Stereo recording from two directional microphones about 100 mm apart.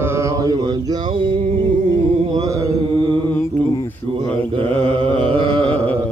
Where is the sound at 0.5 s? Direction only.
45° right (ahead or behind).